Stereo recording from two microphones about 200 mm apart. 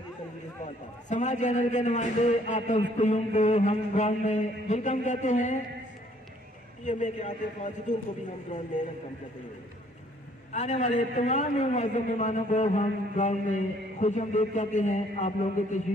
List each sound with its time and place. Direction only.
1.0 s a man's voice: 35° left (ahead or behind)
6.8 s a man's voice: 35° left (ahead or behind)
10.5 s a man's voice: 35° left (ahead or behind)